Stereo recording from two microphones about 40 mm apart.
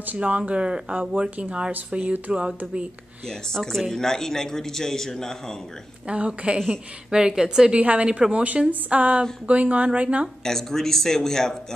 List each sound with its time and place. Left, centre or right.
0.0 s speech: right
3.3 s a man's voice: centre
6.0 s speech: right
7.1 s a woman's voice: centre
7.8 s speech: right
10.4 s a man's voice: centre